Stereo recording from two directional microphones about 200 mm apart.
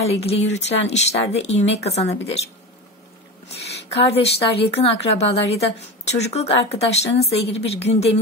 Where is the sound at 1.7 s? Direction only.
30° left (ahead or behind).